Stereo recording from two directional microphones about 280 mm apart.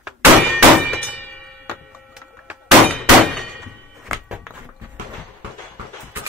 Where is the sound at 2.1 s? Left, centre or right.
Centre.